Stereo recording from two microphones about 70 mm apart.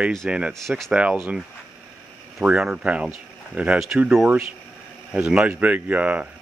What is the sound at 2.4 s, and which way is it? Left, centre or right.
Speech, centre.